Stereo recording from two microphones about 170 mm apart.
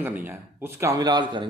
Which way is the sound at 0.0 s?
10° right (ahead or behind).